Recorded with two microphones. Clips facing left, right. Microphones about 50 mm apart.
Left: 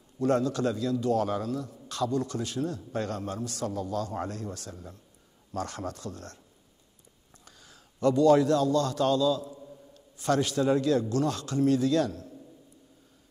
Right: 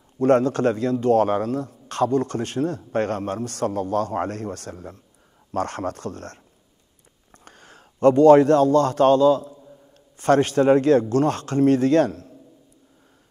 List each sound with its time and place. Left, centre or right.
0.2 s a man's voice: right
7.4 s a man's voice: right